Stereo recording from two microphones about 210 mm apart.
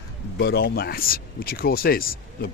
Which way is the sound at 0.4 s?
50° left (ahead or behind).